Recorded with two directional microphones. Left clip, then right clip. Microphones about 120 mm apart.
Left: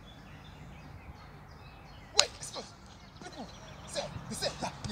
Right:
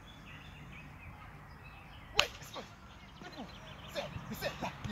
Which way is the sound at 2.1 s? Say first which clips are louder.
Left 3 dB; 20° left (ahead or behind).